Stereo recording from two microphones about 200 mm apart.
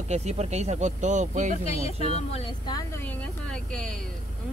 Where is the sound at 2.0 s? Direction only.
30° left (ahead or behind).